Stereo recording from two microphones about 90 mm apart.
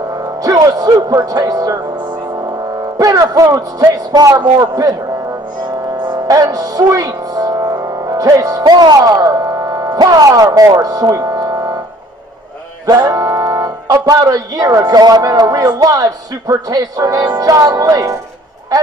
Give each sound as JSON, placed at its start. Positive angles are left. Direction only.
{"t": 0.4, "sound": "music", "side_deg": -45}
{"t": 3.0, "sound": "music", "side_deg": -40}
{"t": 3.5, "sound": "a man's voice", "side_deg": -40}
{"t": 5.9, "sound": "music", "side_deg": -45}
{"t": 12.8, "sound": "speech", "side_deg": -45}